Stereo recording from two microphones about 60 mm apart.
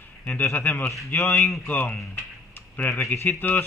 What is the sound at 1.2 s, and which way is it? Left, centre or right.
Speech, centre.